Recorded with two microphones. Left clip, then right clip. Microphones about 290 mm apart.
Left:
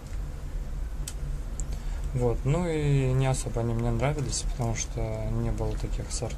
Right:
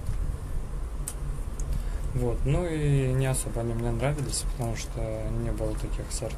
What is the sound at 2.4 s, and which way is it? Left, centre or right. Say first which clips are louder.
Speech: left 1 dB; left.